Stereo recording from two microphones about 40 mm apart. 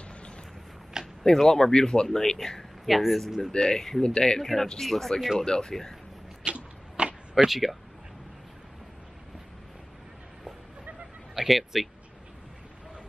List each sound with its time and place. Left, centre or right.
1.2 s speech: centre
2.9 s speech: centre
3.5 s speech: centre
5.4 s speech: centre
6.4 s a sound: right
7.3 s speech: centre
11.3 s speech: centre